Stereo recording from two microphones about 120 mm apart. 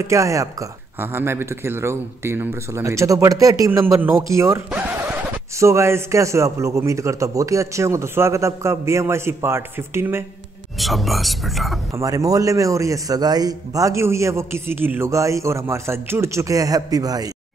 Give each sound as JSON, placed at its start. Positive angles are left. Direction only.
{"t": 0.0, "sound": "a man's voice", "side_deg": -25}
{"t": 10.8, "sound": "speech", "side_deg": 0}
{"t": 11.9, "sound": "a man's voice", "side_deg": -25}